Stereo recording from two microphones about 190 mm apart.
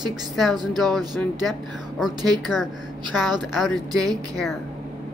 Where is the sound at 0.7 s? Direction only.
Centre (ahead or behind).